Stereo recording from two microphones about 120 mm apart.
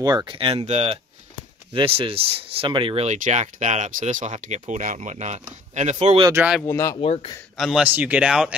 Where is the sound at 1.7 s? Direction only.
50° right (ahead or behind).